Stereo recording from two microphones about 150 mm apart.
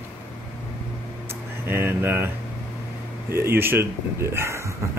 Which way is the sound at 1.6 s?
15° right (ahead or behind).